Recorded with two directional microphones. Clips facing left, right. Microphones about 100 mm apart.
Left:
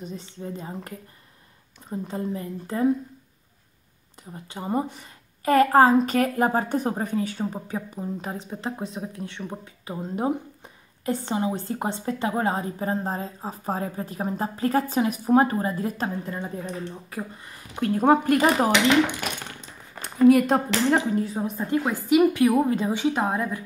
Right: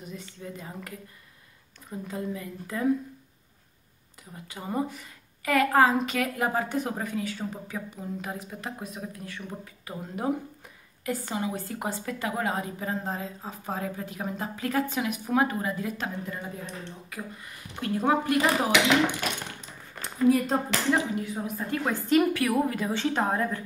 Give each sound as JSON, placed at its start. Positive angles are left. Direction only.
{"t": 0.0, "sound": "a woman's voice", "side_deg": 30}
{"t": 4.3, "sound": "a woman's voice", "side_deg": 25}
{"t": 17.9, "sound": "speech", "side_deg": 45}
{"t": 20.2, "sound": "speech", "side_deg": 70}
{"t": 20.9, "sound": "a woman's voice", "side_deg": 40}